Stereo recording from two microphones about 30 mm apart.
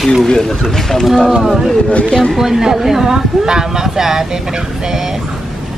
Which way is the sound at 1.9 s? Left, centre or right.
Left.